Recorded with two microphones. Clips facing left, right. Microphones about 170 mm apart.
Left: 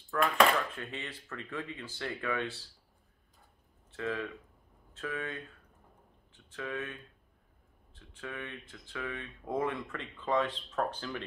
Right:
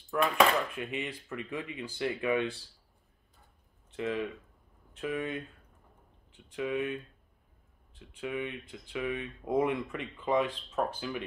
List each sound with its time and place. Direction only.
0.1 s speech: 15° right (ahead or behind)
3.9 s speech: 20° right (ahead or behind)